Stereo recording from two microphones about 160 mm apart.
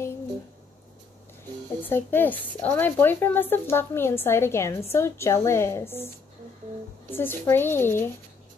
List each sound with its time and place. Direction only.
1.8 s a woman's voice: 15° left (ahead or behind)
7.1 s a woman's voice: 15° left (ahead or behind)